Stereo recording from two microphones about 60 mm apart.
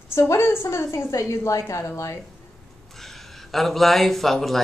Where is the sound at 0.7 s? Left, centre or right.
Left.